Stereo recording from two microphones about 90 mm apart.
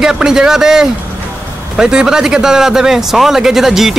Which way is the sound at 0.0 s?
5° right (ahead or behind).